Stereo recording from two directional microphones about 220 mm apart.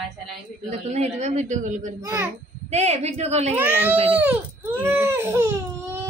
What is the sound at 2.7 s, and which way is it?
Speech, 30° right (ahead or behind).